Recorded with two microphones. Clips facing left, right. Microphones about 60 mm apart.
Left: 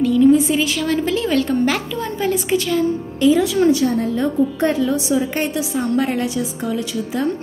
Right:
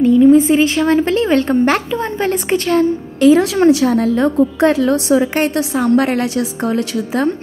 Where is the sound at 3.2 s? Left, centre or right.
Right.